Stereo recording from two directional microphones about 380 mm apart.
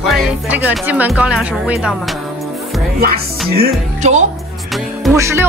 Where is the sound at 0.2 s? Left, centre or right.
Centre.